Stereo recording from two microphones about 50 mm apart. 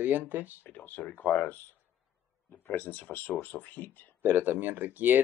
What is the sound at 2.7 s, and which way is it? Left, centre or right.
Speech, left.